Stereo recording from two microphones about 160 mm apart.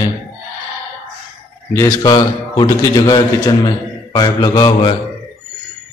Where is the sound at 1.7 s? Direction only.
20° left (ahead or behind).